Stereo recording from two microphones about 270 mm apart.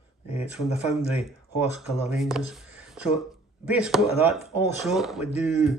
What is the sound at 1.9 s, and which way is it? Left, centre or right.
A man's voice, centre.